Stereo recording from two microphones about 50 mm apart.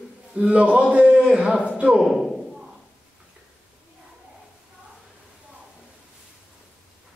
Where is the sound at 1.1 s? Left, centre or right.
Centre.